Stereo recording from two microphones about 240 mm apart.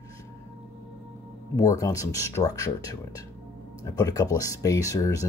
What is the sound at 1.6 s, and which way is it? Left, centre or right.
Speech, centre.